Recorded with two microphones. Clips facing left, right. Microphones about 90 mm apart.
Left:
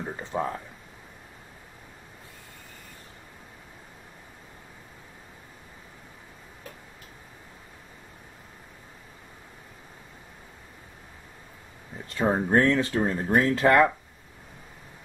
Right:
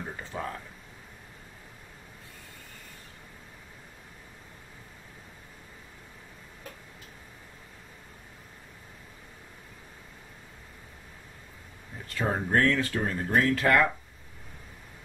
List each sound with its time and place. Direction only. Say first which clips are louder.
0.0 s speech: left 6 dB; 20° left (ahead or behind)
12.1 s speech: left 5 dB; 25° left (ahead or behind)